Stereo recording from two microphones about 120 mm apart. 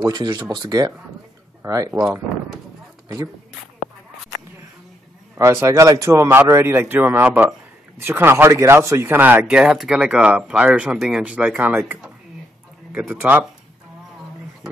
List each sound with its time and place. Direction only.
0.0 s speech: 35° right (ahead or behind)
5.4 s speech: 25° right (ahead or behind)